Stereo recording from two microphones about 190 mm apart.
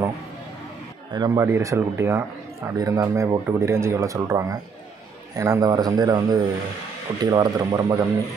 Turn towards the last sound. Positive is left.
turn(degrees=-20)  # may be behind; listen again after turning